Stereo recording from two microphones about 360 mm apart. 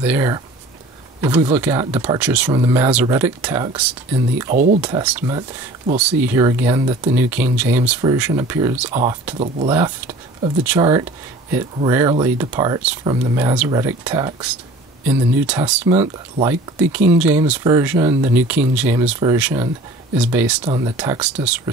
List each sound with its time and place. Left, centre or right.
0.0 s speech: centre
4.5 s speech: right; by 15.9 s centre
15.9 s speech: centre